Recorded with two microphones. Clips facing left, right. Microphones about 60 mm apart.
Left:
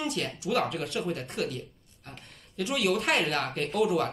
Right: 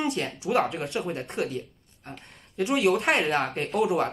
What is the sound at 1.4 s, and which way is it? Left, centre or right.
Speech, right.